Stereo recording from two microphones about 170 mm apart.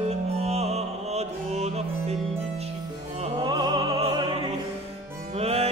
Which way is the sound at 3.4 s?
25° right (ahead or behind).